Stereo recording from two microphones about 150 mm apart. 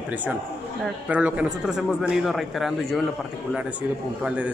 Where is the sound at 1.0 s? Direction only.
10° right (ahead or behind).